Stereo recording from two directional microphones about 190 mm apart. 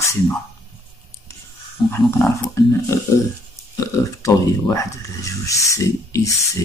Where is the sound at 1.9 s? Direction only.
15° left (ahead or behind).